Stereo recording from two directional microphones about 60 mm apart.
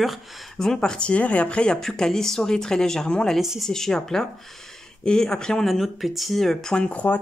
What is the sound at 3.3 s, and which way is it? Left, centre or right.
Speech, centre.